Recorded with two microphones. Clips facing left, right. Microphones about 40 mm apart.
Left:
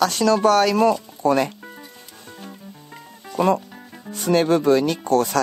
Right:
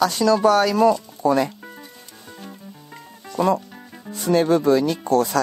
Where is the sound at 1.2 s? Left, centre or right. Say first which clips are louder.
Even; left.